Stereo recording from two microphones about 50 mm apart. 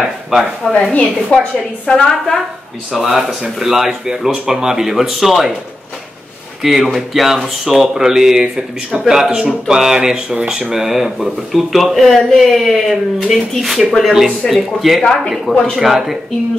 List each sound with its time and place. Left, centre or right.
0.0 s speech: centre
1.3 s a woman's voice: left
1.9 s a woman's voice: centre
2.9 s speech: centre
6.6 s speech: centre
15.0 s a woman's voice: centre
15.7 s speech: centre